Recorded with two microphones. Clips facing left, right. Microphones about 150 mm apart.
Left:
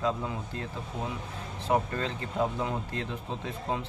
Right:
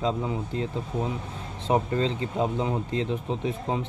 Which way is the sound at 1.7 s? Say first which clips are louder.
Right 4 dB; 20° right (ahead or behind).